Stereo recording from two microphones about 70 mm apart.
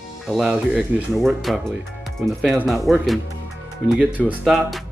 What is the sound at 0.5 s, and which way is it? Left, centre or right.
Speech, right.